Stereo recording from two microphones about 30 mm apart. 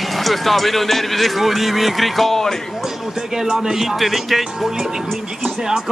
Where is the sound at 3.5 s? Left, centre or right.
Centre.